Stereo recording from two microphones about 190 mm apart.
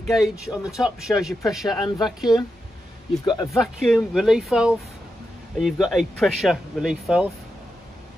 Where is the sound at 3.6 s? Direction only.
Centre (ahead or behind).